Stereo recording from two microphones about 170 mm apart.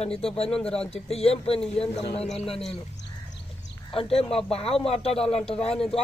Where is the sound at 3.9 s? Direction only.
35° left (ahead or behind).